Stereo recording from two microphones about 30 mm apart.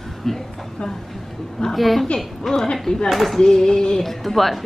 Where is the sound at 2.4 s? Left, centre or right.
Centre.